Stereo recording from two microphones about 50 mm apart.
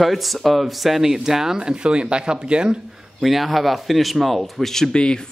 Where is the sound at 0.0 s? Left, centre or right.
Centre.